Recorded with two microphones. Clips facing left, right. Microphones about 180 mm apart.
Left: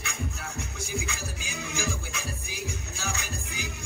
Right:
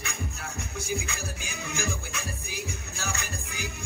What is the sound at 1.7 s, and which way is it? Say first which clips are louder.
Music: even; 55° right (ahead or behind).